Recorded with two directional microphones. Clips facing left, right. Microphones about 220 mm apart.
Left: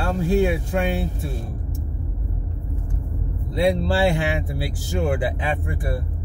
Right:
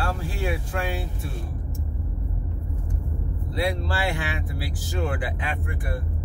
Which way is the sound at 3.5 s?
25° left (ahead or behind).